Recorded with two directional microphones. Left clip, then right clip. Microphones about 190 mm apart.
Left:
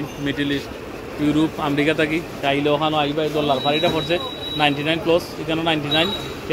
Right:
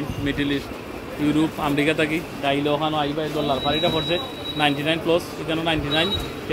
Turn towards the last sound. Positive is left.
turn(degrees=10)  # may be behind; listen again after turning